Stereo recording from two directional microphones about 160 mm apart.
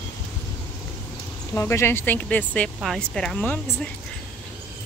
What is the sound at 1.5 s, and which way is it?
Speech, 15° left (ahead or behind).